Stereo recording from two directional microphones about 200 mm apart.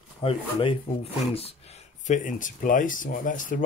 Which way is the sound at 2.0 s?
40° left (ahead or behind).